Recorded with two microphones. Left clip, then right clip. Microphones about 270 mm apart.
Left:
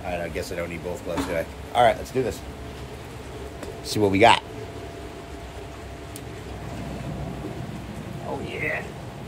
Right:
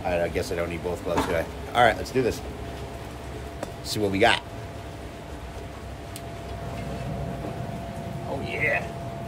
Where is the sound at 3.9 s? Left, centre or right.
Left.